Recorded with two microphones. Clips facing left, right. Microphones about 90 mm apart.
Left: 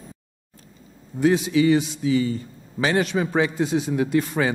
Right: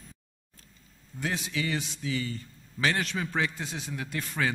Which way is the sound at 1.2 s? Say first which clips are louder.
Left 14 dB; 15° left (ahead or behind).